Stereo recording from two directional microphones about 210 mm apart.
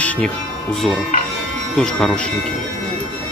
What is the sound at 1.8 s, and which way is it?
Speech, centre (ahead or behind).